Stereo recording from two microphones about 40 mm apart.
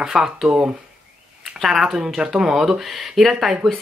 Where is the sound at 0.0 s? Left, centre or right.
Centre.